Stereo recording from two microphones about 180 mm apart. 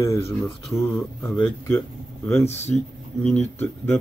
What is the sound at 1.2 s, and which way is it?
Speech, 10° left (ahead or behind).